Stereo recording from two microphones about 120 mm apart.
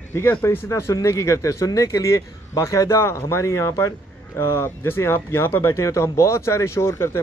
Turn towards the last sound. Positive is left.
turn(degrees=20)  # may be behind; listen again after turning